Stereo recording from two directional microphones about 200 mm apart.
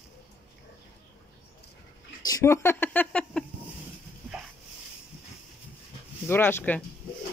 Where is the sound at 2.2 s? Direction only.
15° left (ahead or behind).